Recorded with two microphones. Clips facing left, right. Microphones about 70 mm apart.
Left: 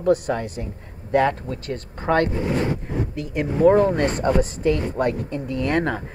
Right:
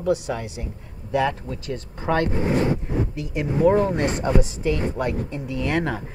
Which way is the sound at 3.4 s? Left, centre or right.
Left.